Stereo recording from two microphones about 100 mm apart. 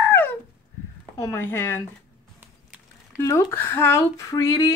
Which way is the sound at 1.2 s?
25° left (ahead or behind).